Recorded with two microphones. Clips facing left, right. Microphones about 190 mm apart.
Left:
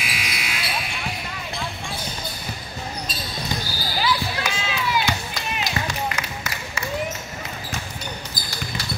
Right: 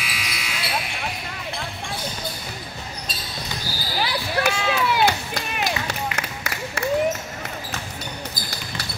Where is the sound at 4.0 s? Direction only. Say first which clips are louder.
Right 1 dB; 60° right (ahead or behind).